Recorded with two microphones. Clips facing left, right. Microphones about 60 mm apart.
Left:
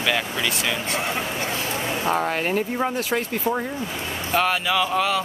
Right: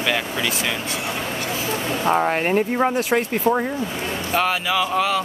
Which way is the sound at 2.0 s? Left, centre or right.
Centre.